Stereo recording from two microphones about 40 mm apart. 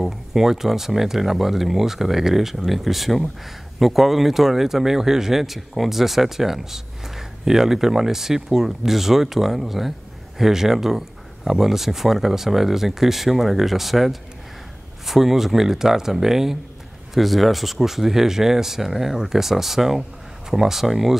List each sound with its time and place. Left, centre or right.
0.0 s speech: centre